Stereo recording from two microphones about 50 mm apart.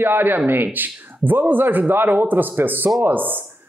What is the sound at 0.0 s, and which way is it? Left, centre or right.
A man's voice, right.